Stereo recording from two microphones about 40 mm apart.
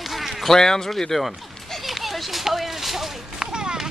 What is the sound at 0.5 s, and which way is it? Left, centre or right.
Speech, centre.